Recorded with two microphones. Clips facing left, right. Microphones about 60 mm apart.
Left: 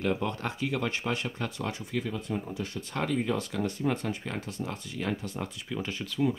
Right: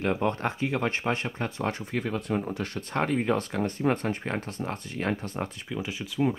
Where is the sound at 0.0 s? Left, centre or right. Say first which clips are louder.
Right 3 dB; right.